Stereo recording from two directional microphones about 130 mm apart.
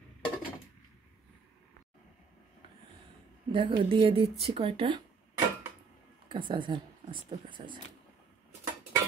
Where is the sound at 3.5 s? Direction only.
40° right (ahead or behind).